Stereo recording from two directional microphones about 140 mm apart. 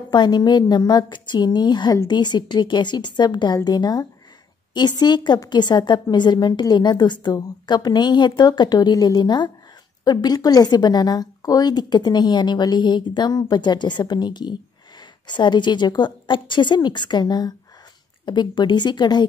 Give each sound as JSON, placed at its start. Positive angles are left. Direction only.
{"t": 0.1, "sound": "a woman's voice", "side_deg": 30}